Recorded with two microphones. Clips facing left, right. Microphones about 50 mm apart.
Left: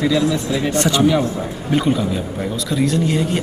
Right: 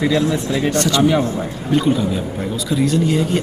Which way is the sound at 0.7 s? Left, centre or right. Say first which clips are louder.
Even; centre.